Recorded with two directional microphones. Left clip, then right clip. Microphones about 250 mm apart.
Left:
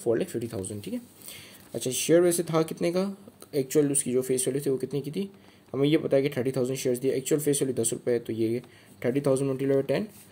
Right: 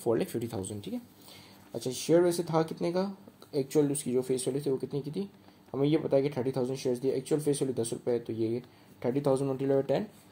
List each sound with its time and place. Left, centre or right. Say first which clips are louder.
0.0 s speech: left 3 dB; centre